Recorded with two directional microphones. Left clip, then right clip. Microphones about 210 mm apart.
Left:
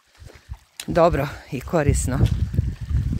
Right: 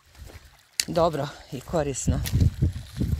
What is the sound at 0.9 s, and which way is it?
Speech, 40° left (ahead or behind).